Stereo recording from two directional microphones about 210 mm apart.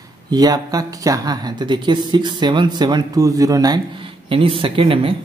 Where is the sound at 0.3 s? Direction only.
20° right (ahead or behind).